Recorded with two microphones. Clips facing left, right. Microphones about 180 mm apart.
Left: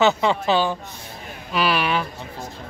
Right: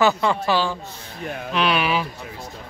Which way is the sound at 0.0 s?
20° left (ahead or behind).